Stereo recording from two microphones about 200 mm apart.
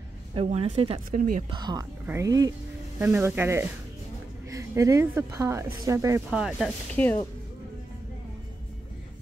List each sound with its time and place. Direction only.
0.3 s speech: 30° right (ahead or behind)
1.1 s speech: 45° right (ahead or behind)
1.5 s a woman's voice: 20° right (ahead or behind)
6.3 s speech: centre (ahead or behind)